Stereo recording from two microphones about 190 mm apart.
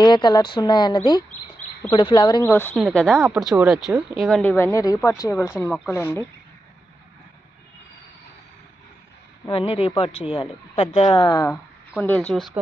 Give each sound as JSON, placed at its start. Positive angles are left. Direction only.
{"t": 0.0, "sound": "speech", "side_deg": 25}
{"t": 9.5, "sound": "speech", "side_deg": 30}
{"t": 11.5, "sound": "speech", "side_deg": 5}